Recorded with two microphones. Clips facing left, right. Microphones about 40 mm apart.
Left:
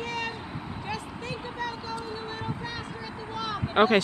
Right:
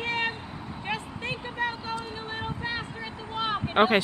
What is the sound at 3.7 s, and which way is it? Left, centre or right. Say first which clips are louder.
Speech: left 1 dB; centre.